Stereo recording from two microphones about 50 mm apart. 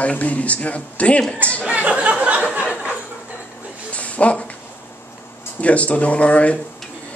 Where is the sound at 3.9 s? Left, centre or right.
Left.